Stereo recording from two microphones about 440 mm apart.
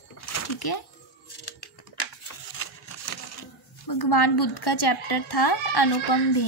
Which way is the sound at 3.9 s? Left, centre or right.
Left.